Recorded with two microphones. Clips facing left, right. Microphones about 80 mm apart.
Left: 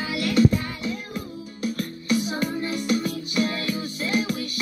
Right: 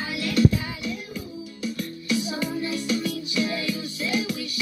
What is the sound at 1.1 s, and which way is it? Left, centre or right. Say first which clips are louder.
Music: left 1 dB; left.